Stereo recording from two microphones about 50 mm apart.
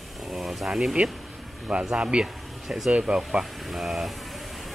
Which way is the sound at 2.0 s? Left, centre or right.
Right.